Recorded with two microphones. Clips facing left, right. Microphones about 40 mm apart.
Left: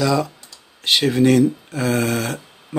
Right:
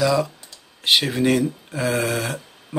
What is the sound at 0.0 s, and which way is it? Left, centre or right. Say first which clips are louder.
Speech: even; centre.